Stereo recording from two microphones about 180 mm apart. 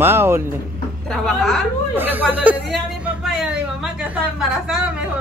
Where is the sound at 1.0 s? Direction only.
Centre (ahead or behind).